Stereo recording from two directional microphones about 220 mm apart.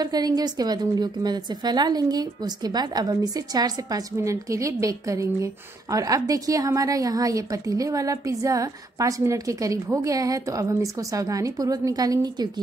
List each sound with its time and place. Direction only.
0.0 s a woman's voice: 20° right (ahead or behind)